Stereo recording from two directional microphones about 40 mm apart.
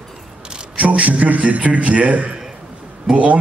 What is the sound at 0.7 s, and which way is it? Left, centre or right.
A man's voice, right.